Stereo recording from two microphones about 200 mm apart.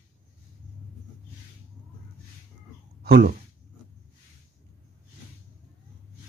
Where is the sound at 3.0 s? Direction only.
50° right (ahead or behind).